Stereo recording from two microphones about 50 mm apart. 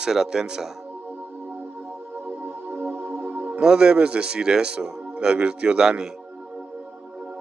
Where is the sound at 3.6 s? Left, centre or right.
Centre.